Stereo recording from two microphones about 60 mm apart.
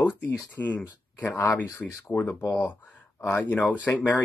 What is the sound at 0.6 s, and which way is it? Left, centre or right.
Speech, left.